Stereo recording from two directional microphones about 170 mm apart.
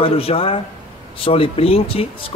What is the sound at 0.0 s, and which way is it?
Speech, 35° left (ahead or behind).